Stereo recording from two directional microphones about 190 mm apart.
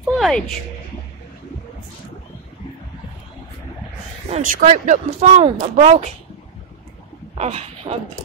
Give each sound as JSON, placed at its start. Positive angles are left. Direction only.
{"t": 0.2, "sound": "speech", "side_deg": 0}
{"t": 4.3, "sound": "speech", "side_deg": -45}
{"t": 7.3, "sound": "speech", "side_deg": -35}